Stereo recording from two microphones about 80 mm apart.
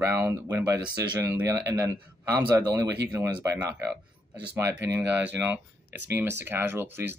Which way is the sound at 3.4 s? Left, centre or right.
Right.